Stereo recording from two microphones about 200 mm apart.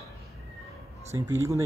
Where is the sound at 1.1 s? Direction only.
15° right (ahead or behind).